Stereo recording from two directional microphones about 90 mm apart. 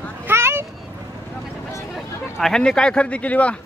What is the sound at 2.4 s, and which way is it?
Speech, 10° left (ahead or behind).